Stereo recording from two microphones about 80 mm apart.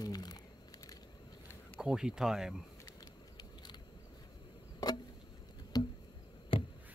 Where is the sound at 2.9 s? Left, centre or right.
Left.